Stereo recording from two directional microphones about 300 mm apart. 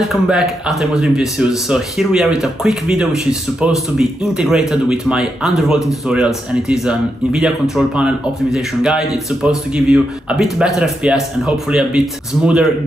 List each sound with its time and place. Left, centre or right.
0.1 s speech: centre